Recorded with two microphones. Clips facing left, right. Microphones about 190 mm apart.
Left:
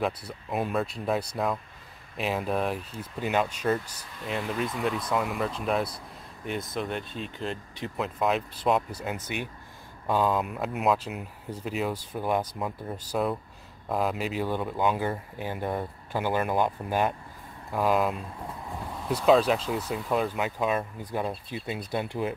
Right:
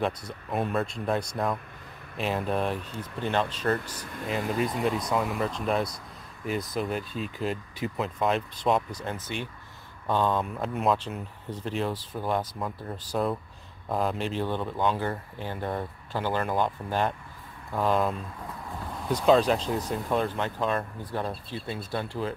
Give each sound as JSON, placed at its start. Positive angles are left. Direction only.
{"t": 0.3, "sound": "speech", "side_deg": 5}
{"t": 4.0, "sound": "speech", "side_deg": -50}
{"t": 4.8, "sound": "speech", "side_deg": 0}